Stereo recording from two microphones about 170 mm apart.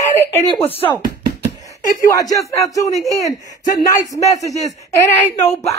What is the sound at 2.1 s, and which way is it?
Speech, 20° left (ahead or behind).